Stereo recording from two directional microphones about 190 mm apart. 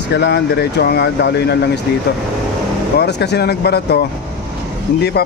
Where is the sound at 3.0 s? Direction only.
60° left (ahead or behind).